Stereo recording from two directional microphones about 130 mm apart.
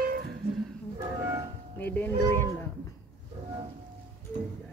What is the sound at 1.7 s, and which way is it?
Speech, 15° left (ahead or behind).